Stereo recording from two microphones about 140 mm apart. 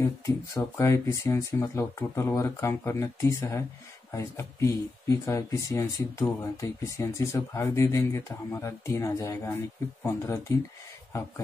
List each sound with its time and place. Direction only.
0.6 s speech: 20° left (ahead or behind)